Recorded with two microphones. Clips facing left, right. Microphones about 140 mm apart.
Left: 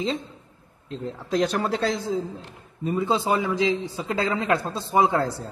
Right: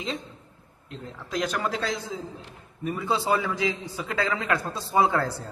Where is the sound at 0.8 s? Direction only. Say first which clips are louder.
Left 8 dB; 30° left (ahead or behind).